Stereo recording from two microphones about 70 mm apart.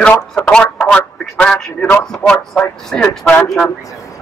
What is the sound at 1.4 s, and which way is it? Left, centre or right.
A man's voice, centre.